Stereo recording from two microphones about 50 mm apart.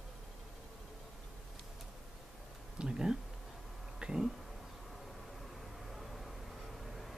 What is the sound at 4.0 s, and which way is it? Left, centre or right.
Cat, centre.